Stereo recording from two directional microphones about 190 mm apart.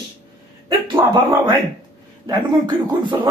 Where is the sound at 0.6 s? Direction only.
15° right (ahead or behind).